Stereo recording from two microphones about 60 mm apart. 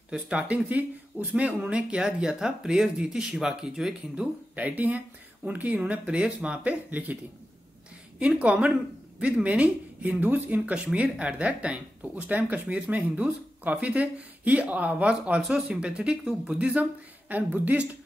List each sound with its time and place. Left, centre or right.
0.1 s speech: centre
4.6 s speech: right
8.4 s speech: right
17.3 s speech: right